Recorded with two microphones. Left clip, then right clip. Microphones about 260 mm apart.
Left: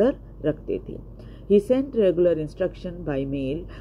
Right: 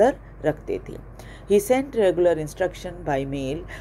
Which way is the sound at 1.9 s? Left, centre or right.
Right.